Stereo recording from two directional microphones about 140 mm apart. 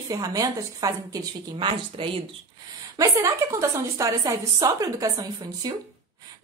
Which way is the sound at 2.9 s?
25° right (ahead or behind).